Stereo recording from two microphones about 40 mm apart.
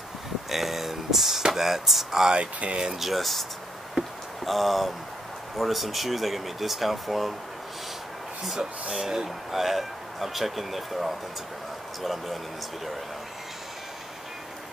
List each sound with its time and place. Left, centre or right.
0.5 s a sound: centre
1.5 s speech: centre
2.3 s speech: right
2.8 s speech: centre
4.5 s speech: centre
8.5 s speech: centre